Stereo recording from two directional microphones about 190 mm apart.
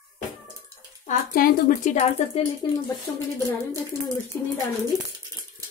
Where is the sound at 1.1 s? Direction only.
45° left (ahead or behind).